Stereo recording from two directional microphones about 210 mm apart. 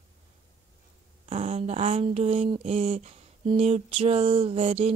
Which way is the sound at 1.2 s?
30° right (ahead or behind).